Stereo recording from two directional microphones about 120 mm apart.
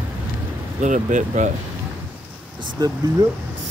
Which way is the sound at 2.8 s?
35° right (ahead or behind).